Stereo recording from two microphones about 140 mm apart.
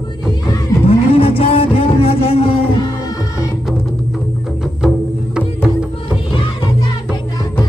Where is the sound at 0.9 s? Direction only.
45° left (ahead or behind).